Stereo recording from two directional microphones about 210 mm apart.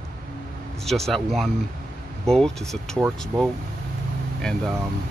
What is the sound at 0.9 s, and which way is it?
Speech, centre (ahead or behind).